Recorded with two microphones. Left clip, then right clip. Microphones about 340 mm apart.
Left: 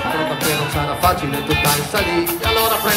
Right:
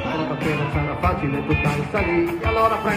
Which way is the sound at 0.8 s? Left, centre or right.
Left.